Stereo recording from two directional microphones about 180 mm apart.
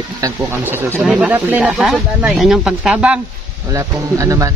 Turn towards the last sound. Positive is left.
turn(degrees=-20)  # may be behind; listen again after turning